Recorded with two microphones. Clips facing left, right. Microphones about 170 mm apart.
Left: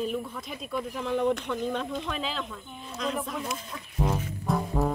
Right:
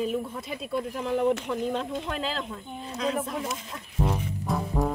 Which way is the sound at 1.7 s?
35° right (ahead or behind).